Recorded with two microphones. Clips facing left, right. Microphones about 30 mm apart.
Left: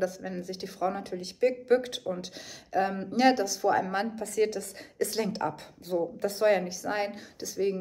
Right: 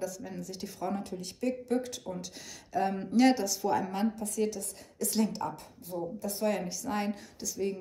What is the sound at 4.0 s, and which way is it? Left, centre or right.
Speech, left.